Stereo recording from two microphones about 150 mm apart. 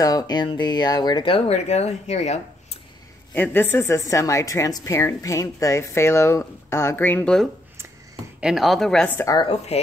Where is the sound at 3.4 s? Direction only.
15° left (ahead or behind).